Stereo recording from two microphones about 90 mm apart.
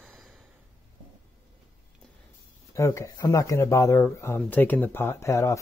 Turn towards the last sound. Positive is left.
turn(degrees=35)  # may be behind; listen again after turning